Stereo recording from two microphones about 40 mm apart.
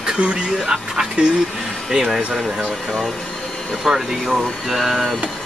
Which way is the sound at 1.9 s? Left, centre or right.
Centre.